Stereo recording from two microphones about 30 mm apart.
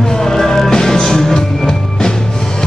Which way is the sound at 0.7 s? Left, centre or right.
Left.